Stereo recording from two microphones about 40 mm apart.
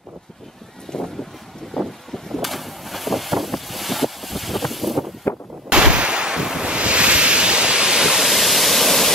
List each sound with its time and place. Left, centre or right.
0.9 s boat: centre
2.1 s vehicle: centre
5.2 s gunshot: left
5.7 s waves: right
8.0 s waterfall: centre